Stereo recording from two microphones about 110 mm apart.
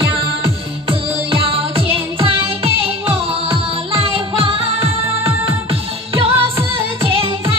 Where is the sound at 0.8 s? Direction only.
55° right (ahead or behind).